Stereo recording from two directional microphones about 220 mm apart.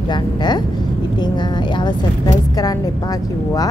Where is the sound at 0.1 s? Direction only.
20° left (ahead or behind).